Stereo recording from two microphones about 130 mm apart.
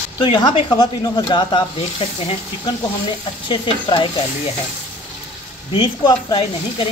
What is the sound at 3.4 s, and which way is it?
Speech, 40° left (ahead or behind).